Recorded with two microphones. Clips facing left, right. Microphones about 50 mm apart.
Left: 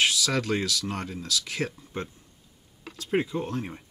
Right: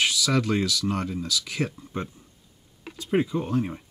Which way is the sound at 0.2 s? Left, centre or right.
Right.